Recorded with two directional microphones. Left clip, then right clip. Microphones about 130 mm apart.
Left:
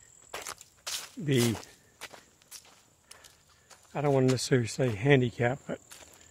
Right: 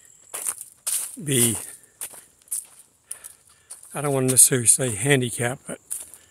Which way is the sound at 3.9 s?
45° right (ahead or behind).